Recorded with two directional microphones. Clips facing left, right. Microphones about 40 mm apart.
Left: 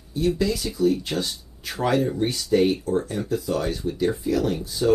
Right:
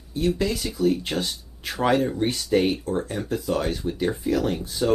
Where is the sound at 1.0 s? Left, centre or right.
Right.